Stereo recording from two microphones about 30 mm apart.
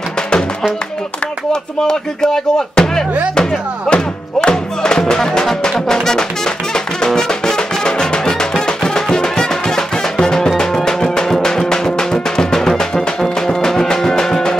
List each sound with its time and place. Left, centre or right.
1.5 s speech: left
3.9 s music: left; by 14.6 s centre